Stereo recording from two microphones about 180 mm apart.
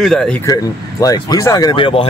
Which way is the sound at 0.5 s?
20° left (ahead or behind).